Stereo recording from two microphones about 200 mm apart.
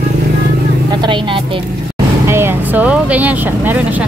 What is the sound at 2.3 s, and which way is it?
Speech, 10° right (ahead or behind).